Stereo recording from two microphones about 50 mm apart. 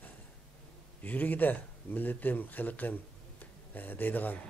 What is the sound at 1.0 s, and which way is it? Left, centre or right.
Speech, left.